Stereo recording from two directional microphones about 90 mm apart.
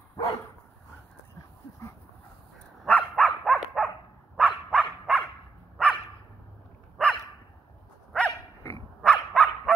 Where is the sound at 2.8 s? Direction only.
15° left (ahead or behind).